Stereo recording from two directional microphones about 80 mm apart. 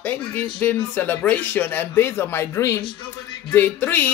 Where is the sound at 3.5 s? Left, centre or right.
Left.